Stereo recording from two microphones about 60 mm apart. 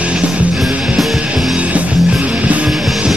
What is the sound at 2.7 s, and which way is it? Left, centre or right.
Music, centre.